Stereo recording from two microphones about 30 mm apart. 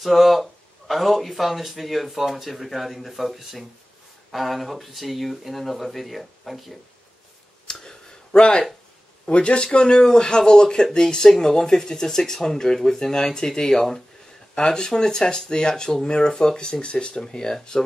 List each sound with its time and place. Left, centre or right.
0.0 s speech: centre
7.6 s a sound: left
9.2 s speech: left
9.7 s speech: left
14.5 s speech: left
17.2 s speech: left